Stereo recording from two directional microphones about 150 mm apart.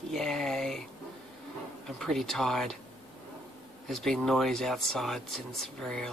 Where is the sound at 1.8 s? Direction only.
Centre (ahead or behind).